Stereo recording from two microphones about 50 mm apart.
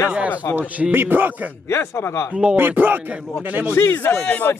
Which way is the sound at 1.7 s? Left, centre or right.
Left.